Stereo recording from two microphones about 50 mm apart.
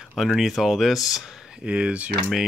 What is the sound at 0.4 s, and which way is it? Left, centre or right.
Speech, centre.